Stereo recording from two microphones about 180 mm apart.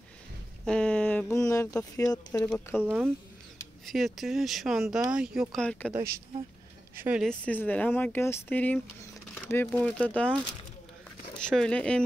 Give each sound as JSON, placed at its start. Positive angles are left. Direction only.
{"t": 0.7, "sound": "a sound", "side_deg": 5}
{"t": 1.4, "sound": "speech", "side_deg": 20}
{"t": 2.5, "sound": "speech", "side_deg": -5}
{"t": 7.0, "sound": "speech", "side_deg": -5}
{"t": 7.2, "sound": "speech", "side_deg": 10}
{"t": 11.4, "sound": "speech", "side_deg": 5}